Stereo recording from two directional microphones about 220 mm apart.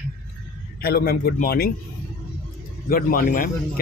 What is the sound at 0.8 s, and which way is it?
Speech, 45° left (ahead or behind).